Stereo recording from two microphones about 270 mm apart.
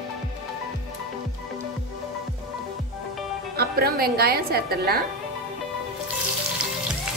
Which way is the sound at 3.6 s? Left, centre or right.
Right.